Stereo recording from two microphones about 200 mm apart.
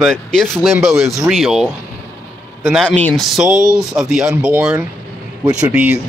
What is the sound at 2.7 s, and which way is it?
A man's voice, 5° left (ahead or behind).